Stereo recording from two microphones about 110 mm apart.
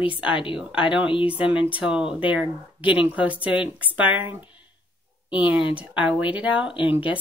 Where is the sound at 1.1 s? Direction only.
55° left (ahead or behind).